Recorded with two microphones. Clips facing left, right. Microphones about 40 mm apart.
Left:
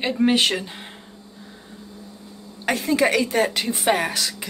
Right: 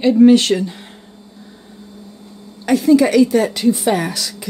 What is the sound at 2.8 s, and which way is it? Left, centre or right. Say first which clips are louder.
A woman's voice: right 9 dB; left.